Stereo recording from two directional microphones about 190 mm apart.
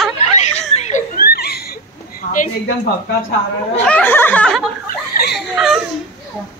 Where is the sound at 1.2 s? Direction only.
55° left (ahead or behind).